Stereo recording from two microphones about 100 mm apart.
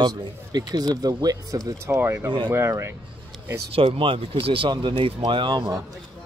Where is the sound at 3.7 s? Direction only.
65° right (ahead or behind).